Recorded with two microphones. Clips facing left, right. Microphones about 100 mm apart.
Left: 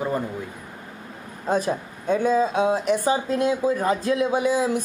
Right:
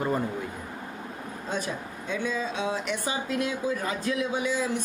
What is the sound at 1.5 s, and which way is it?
A woman's voice, 40° left (ahead or behind).